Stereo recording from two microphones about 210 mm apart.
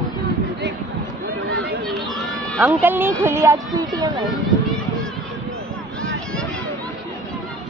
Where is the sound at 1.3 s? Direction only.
50° right (ahead or behind).